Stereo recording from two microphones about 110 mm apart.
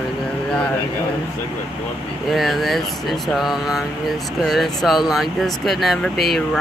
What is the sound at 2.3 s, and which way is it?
Speech, centre (ahead or behind).